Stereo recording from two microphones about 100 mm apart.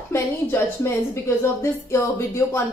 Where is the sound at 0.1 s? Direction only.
25° left (ahead or behind).